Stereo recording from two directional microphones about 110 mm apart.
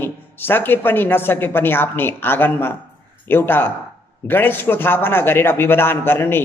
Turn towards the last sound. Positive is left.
turn(degrees=20)  # may be behind; listen again after turning